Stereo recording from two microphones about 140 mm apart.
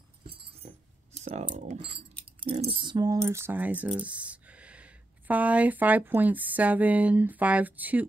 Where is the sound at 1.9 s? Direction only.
40° right (ahead or behind).